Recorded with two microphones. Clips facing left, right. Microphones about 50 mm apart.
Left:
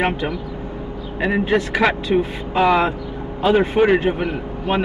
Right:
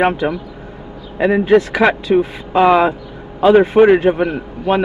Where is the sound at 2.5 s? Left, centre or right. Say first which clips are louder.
Right 5 dB; centre.